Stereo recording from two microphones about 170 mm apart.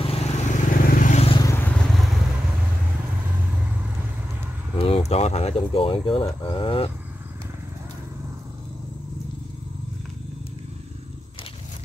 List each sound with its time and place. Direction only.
0.0 s vehicle: 35° left (ahead or behind)
0.8 s vehicle: 50° left (ahead or behind)
1.3 s vehicle: 20° left (ahead or behind)
1.9 s vehicle: centre (ahead or behind)
4.7 s speech: 35° left (ahead or behind)